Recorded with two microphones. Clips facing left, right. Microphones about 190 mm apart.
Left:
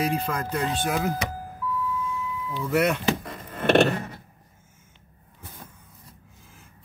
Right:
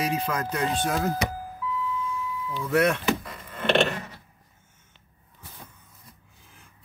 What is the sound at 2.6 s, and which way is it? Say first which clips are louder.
Speech: even; centre (ahead or behind).